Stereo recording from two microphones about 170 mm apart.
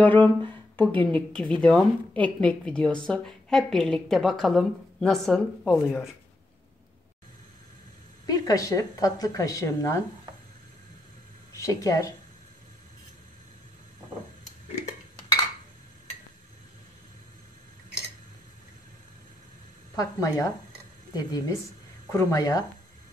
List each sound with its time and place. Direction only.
0.0 s a woman's voice: 10° left (ahead or behind)
8.3 s a woman's voice: 20° left (ahead or behind)
11.5 s speech: 20° left (ahead or behind)
20.0 s a woman's voice: 20° left (ahead or behind)